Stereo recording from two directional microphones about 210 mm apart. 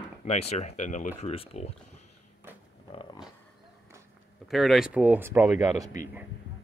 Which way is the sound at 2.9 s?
25° left (ahead or behind).